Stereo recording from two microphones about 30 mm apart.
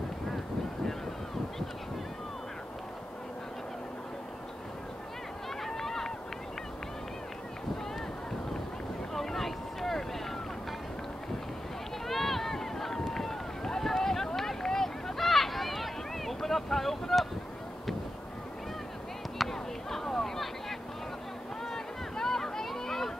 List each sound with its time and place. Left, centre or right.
5.6 s run: centre
9.1 s boat: centre
12.1 s run: centre
15.1 s boat: centre
19.3 s a sound: centre
21.7 s a sound: centre